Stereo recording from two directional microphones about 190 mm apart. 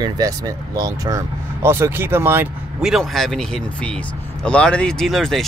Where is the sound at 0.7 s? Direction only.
20° right (ahead or behind).